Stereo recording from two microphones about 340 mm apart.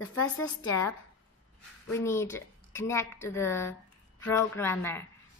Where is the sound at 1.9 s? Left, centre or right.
Centre.